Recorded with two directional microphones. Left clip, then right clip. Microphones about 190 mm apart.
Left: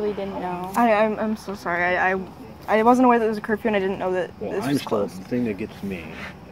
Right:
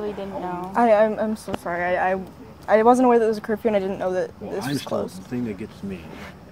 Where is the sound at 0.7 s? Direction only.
20° right (ahead or behind).